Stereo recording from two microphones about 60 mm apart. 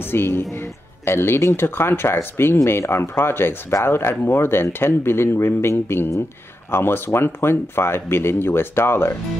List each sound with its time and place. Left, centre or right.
0.1 s speech: left